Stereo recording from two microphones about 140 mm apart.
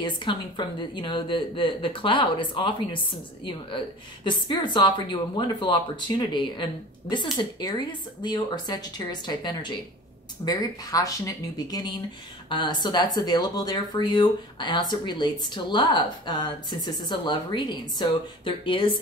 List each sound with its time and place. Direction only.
0.0 s speech: 35° left (ahead or behind)